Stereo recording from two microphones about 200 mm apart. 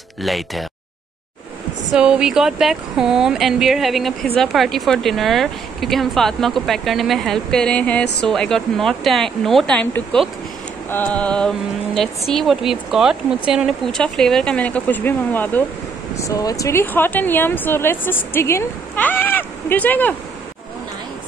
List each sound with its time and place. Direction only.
0.2 s speech: centre (ahead or behind)
1.9 s a woman's voice: 5° right (ahead or behind)